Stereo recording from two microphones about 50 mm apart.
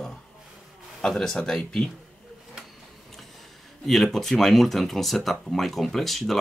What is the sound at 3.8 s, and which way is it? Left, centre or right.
Speech, centre.